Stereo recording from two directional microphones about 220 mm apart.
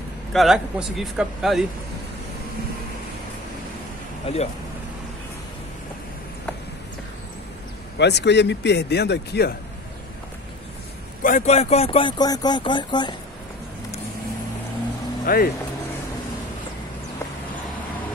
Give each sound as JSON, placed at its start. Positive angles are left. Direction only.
{"t": 0.3, "sound": "a man's voice", "side_deg": 0}
{"t": 4.3, "sound": "speech", "side_deg": 25}
{"t": 8.0, "sound": "a man's voice", "side_deg": 50}
{"t": 11.2, "sound": "speech", "side_deg": 35}
{"t": 15.2, "sound": "speech", "side_deg": 40}